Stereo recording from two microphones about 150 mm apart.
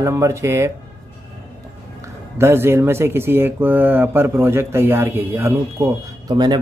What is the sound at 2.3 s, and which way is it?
Speech, 15° right (ahead or behind).